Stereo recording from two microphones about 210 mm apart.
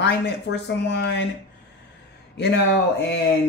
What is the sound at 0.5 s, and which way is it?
Speech, 55° left (ahead or behind).